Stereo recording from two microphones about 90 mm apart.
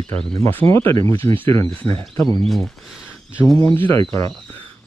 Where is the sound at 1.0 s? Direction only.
90° right.